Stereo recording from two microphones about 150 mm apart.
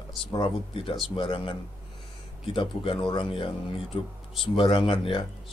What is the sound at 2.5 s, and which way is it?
Speech, 35° left (ahead or behind).